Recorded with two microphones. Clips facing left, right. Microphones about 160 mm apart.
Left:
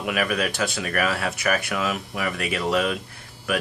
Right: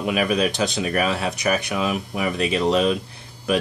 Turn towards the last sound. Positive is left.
turn(degrees=-20)  # may be behind; listen again after turning